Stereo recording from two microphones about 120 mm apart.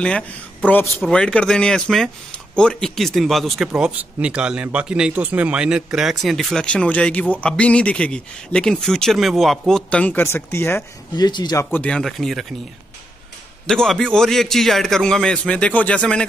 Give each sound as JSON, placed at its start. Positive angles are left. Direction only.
{"t": 0.7, "sound": "speech", "side_deg": 15}
{"t": 11.1, "sound": "speech", "side_deg": 35}
{"t": 11.7, "sound": "speech", "side_deg": 10}
{"t": 13.7, "sound": "speech", "side_deg": 5}